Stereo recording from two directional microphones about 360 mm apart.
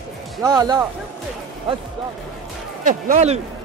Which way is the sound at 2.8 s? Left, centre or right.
Right.